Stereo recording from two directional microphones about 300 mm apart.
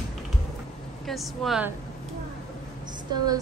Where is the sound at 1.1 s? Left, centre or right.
Centre.